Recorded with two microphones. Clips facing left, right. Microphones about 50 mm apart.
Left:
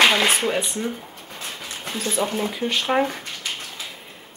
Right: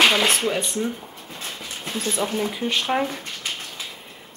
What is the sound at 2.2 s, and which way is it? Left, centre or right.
Speech, centre.